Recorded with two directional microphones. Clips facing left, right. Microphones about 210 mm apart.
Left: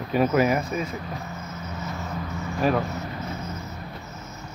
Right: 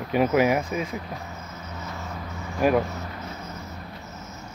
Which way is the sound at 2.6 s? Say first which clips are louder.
Right 2 dB; 10° right (ahead or behind).